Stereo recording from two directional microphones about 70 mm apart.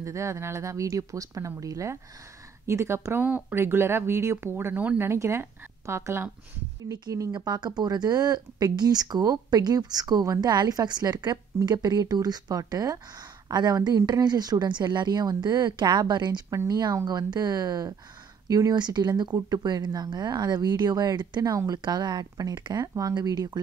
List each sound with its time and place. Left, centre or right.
0.0 s speech: right
2.6 s speech: right
6.9 s speech: right
10.5 s speech: right
16.4 s speech: right
17.0 s speech: right
19.3 s speech: right